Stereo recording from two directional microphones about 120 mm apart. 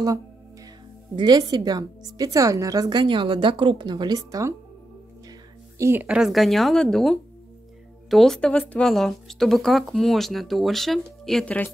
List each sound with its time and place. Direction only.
1.1 s a woman's voice: 35° right (ahead or behind)
5.8 s a woman's voice: 20° right (ahead or behind)
6.0 s speech: 5° right (ahead or behind)